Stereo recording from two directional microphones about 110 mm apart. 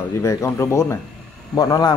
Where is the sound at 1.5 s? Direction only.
35° left (ahead or behind).